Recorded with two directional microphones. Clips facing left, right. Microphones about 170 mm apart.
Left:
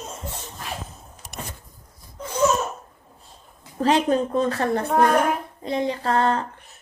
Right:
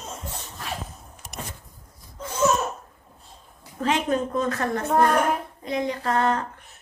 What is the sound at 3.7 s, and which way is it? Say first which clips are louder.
A woman's voice: left 4 dB; 35° left (ahead or behind).